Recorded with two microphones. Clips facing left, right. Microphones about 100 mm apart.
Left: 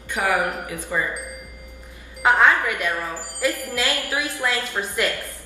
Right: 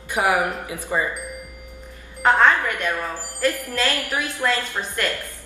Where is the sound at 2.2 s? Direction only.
10° left (ahead or behind).